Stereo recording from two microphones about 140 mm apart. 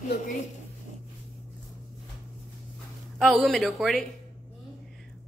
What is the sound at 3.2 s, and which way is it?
Speech, centre (ahead or behind).